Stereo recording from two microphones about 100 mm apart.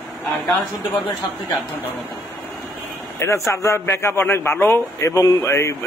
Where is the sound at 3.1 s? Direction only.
30° left (ahead or behind).